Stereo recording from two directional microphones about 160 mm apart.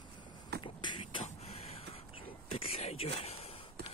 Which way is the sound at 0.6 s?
30° left (ahead or behind).